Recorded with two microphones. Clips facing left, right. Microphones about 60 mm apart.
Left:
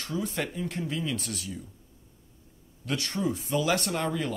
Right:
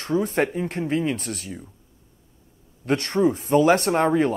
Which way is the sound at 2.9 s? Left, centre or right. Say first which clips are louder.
Right 9 dB; right.